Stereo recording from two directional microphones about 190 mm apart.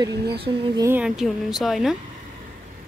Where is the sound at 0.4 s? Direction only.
25° right (ahead or behind).